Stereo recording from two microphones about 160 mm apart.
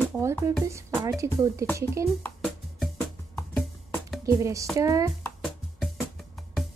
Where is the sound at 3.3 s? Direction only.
10° left (ahead or behind).